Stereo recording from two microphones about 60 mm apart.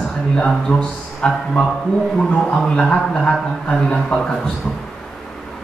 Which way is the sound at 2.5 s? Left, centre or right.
Centre.